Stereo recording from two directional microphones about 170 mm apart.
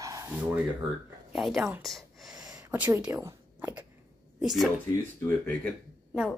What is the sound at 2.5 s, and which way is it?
Speech, 15° right (ahead or behind).